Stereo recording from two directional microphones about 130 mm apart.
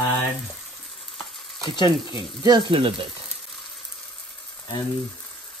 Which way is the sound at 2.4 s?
35° right (ahead or behind).